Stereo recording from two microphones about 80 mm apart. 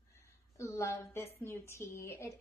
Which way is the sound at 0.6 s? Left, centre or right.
Left.